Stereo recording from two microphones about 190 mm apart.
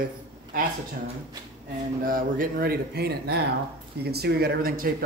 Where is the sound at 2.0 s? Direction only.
50° right (ahead or behind).